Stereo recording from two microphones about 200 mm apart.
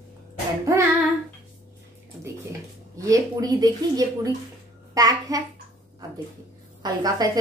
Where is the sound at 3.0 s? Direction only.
20° right (ahead or behind).